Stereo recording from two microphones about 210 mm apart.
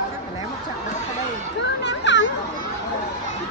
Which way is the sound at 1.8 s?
55° left (ahead or behind).